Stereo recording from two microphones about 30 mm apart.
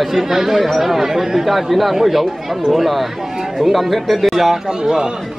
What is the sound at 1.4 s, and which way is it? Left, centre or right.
Speech, centre.